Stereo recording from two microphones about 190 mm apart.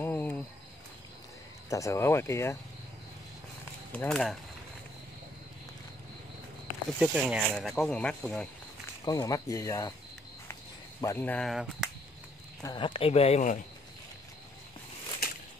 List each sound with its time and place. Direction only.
0.0 s a sound: 10° left (ahead or behind)
1.7 s speech: 15° left (ahead or behind)
3.9 s speech: 5° left (ahead or behind)
7.0 s speech: centre (ahead or behind)
9.0 s speech: 20° left (ahead or behind)
10.5 s a sound: 15° left (ahead or behind); by 11.9 s centre (ahead or behind)
12.6 s speech: 25° left (ahead or behind)